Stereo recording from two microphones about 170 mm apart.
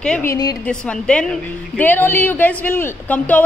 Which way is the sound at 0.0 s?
5° left (ahead or behind).